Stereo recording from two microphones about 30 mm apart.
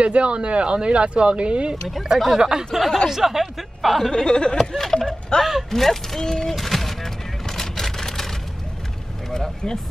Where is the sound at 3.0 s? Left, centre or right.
Centre.